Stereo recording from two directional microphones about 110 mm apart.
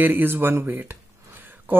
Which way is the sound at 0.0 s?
20° right (ahead or behind).